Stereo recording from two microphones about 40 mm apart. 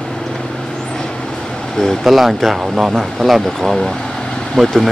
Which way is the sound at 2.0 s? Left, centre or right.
Centre.